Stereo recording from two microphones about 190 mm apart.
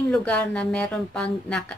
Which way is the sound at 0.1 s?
5° left (ahead or behind).